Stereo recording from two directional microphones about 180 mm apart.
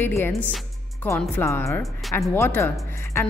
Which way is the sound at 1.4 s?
15° left (ahead or behind).